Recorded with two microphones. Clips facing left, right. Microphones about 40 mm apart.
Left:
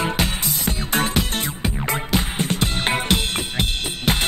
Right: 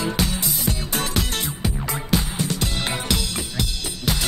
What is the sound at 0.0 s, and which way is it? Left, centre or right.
Music, left.